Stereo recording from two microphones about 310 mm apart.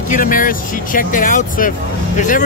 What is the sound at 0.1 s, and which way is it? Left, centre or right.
Speech, left.